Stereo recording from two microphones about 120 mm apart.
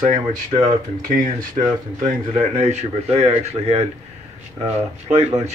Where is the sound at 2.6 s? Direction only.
65° right (ahead or behind).